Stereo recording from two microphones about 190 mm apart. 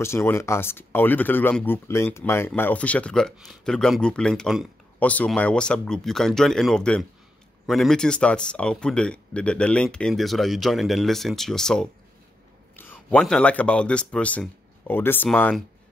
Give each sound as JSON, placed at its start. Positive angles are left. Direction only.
{"t": 0.0, "sound": "speech", "side_deg": 15}